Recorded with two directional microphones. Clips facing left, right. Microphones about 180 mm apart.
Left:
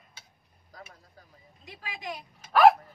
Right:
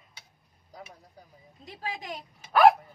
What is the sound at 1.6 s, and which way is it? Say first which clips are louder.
Speech: right 3 dB; 35° right (ahead or behind).